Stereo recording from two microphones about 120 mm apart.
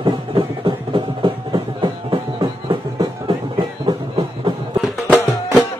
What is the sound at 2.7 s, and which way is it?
Music, 40° right (ahead or behind).